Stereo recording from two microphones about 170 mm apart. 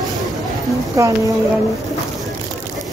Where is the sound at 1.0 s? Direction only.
20° right (ahead or behind).